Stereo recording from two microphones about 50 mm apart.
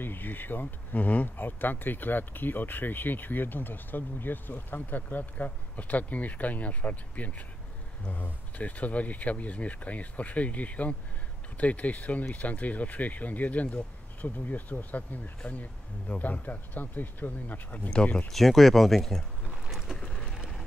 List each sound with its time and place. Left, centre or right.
0.0 s speech: left
17.8 s speech: centre
18.3 s speech: centre
19.6 s vehicle: centre
20.0 s a sound: centre